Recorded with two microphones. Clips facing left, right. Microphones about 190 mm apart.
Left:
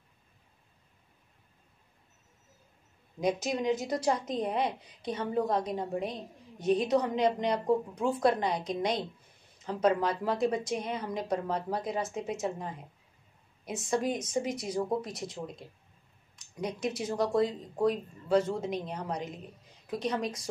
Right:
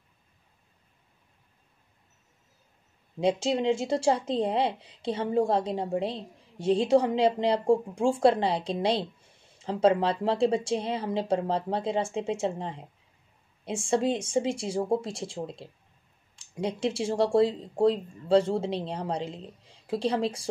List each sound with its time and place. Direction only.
3.2 s a woman's voice: 30° right (ahead or behind)